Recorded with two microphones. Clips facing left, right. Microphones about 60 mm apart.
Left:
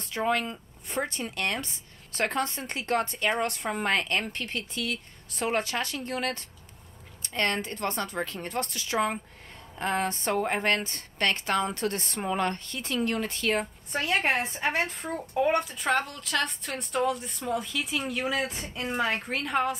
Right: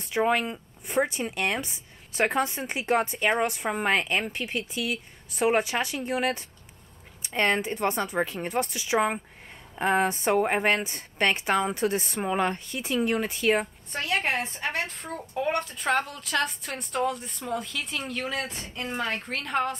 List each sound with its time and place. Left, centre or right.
0.0 s speech: centre
13.9 s a woman's voice: centre